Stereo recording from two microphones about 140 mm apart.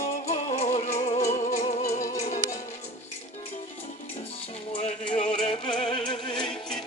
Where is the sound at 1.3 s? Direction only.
65° left (ahead or behind).